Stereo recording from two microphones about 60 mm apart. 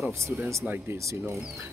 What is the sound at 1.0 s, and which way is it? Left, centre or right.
Speech, right.